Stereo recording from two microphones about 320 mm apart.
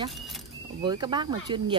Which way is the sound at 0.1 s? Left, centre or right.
Centre.